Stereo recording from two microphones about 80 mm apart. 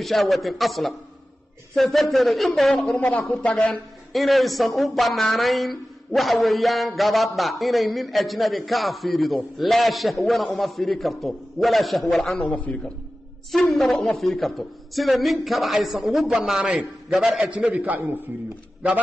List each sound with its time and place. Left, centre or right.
0.0 s speech: centre
4.1 s speech: centre
12.4 s a man's voice: centre
13.5 s a man's voice: centre; by 18.1 s right